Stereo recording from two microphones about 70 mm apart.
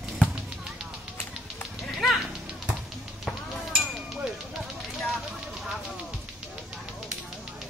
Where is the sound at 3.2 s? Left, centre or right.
Centre.